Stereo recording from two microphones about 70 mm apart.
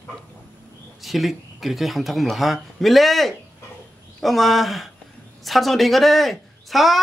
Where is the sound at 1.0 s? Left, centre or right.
Centre.